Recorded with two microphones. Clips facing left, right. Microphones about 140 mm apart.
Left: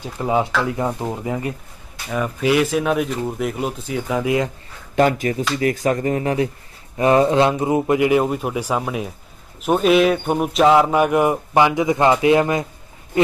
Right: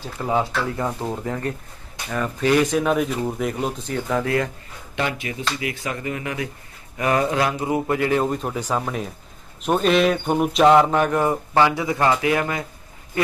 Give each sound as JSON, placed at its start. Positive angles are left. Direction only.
{"t": 0.0, "sound": "speech", "side_deg": 15}
{"t": 4.9, "sound": "speech", "side_deg": 45}